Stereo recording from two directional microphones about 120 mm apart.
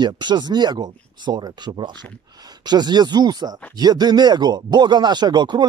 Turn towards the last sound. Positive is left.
turn(degrees=-35)  # may be behind; listen again after turning